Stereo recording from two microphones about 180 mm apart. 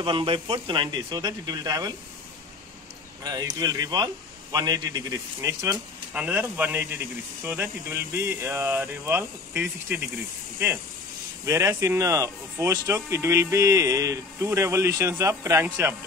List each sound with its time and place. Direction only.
0.0 s a man's voice: 30° right (ahead or behind)
3.3 s a man's voice: 20° right (ahead or behind)
6.1 s speech: 10° right (ahead or behind)
11.4 s speech: 15° right (ahead or behind)